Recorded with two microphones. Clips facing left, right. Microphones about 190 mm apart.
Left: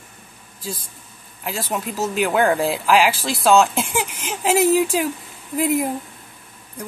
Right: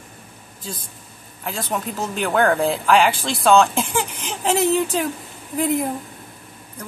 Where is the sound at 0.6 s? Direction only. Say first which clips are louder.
Left 3 dB; 10° left (ahead or behind).